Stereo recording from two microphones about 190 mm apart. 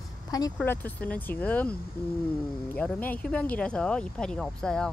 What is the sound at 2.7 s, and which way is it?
Speech, 10° left (ahead or behind).